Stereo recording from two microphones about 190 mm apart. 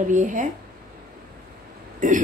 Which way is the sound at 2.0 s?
45° right (ahead or behind).